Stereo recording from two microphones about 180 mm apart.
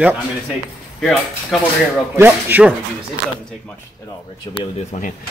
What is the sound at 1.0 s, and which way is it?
Speech, centre (ahead or behind).